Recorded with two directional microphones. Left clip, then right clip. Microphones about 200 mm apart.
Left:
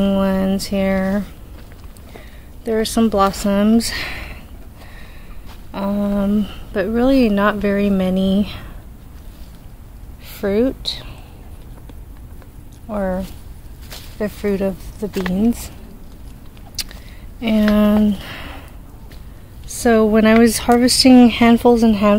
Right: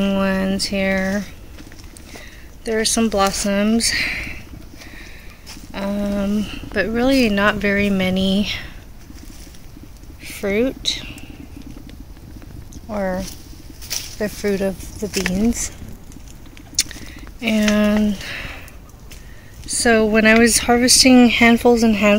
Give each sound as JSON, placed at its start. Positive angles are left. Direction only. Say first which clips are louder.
{"t": 0.0, "sound": "speech", "louder": "left 2 dB", "side_deg": 0}
{"t": 2.6, "sound": "speech", "louder": "left 1 dB", "side_deg": 5}
{"t": 5.7, "sound": "speech", "louder": "left 2 dB", "side_deg": 10}
{"t": 10.2, "sound": "speech", "louder": "left 2 dB", "side_deg": 5}
{"t": 12.8, "sound": "speech", "louder": "left 1 dB", "side_deg": 0}
{"t": 15.0, "sound": "speech", "louder": "right 1 dB", "side_deg": -25}
{"t": 15.3, "sound": "speech", "louder": "left 1 dB", "side_deg": 0}
{"t": 16.7, "sound": "a sound", "louder": "right 6 dB", "side_deg": 5}
{"t": 19.7, "sound": "speech", "louder": "left 1 dB", "side_deg": 5}